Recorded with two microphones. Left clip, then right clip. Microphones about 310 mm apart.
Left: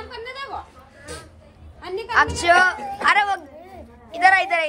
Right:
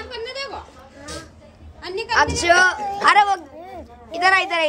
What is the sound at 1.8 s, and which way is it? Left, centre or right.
Speech, centre.